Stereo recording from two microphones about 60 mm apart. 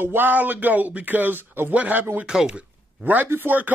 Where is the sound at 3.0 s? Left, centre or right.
Right.